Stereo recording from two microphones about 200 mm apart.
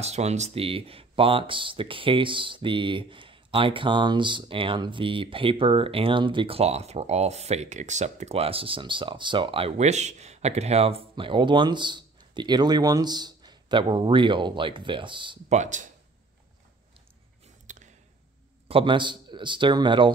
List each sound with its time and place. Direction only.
0.0 s speech: 35° right (ahead or behind)
15.5 s speech: 35° right (ahead or behind)
17.7 s a sound: 40° right (ahead or behind)
18.7 s speech: 25° right (ahead or behind)